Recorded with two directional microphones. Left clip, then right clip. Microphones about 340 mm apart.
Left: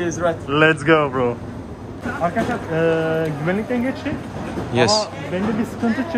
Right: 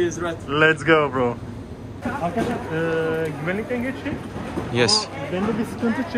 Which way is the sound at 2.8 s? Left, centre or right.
Left.